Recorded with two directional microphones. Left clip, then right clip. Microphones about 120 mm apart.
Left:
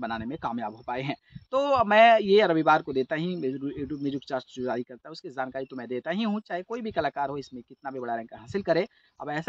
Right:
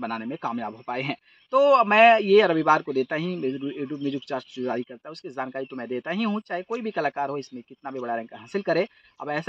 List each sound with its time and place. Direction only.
0.0 s a man's voice: 35° left (ahead or behind)